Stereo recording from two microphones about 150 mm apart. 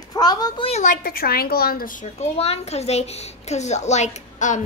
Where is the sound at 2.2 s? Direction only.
45° left (ahead or behind).